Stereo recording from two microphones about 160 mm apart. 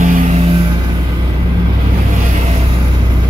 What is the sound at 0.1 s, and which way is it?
Vehicle, 50° right (ahead or behind).